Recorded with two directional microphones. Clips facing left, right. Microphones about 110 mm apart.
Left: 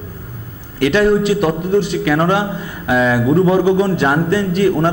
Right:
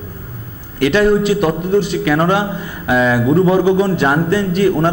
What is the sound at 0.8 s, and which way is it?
Speech, 20° right (ahead or behind).